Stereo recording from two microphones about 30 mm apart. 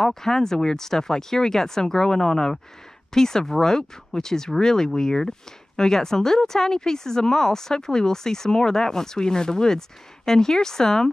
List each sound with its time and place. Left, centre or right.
0.0 s speech: centre